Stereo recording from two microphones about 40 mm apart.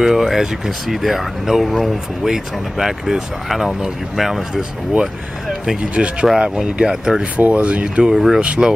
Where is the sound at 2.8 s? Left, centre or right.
Centre.